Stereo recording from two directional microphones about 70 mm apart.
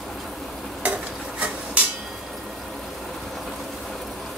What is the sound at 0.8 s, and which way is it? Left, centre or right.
Stir, centre.